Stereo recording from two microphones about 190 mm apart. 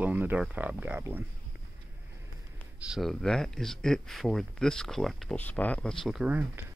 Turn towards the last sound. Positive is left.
turn(degrees=-10)  # may be behind; listen again after turning